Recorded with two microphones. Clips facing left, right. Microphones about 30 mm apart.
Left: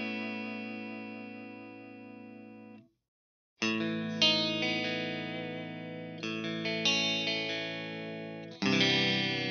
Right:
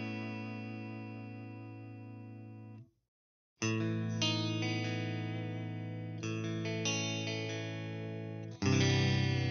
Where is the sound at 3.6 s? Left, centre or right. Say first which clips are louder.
Left 4 dB; left.